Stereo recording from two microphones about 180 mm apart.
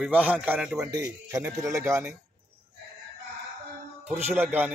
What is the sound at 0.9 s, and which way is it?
A man's voice, 20° right (ahead or behind).